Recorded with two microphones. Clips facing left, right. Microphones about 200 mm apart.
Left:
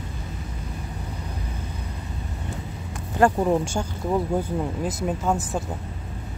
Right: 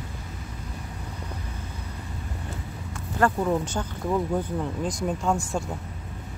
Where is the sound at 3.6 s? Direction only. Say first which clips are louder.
Left 2 dB; 10° left (ahead or behind).